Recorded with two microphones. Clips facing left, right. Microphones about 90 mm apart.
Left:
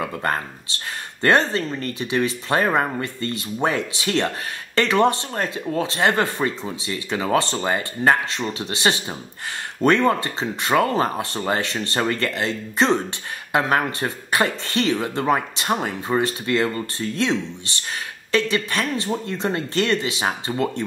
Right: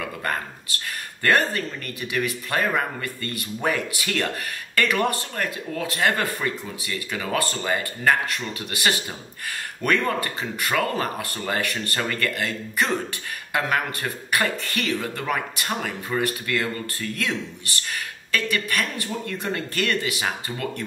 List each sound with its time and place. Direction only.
0.0 s speech: 25° left (ahead or behind)